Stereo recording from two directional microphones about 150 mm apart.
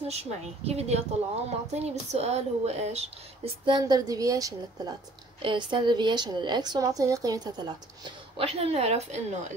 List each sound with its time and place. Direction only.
0.1 s speech: 45° right (ahead or behind)
3.6 s a woman's voice: 30° right (ahead or behind); by 9.4 s 45° right (ahead or behind)